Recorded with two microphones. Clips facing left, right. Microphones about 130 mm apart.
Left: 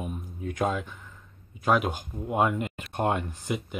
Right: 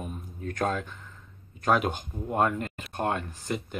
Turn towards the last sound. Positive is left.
turn(degrees=10)  # may be behind; listen again after turning